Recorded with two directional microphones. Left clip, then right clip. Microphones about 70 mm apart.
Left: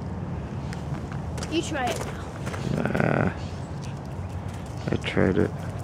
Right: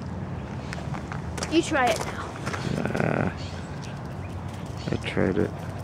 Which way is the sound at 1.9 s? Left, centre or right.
Right.